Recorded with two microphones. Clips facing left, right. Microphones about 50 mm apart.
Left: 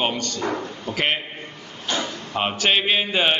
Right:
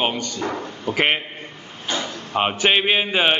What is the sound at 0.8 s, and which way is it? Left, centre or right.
Speech, right.